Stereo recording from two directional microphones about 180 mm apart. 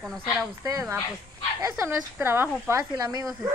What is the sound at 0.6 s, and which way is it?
Speech, 15° right (ahead or behind).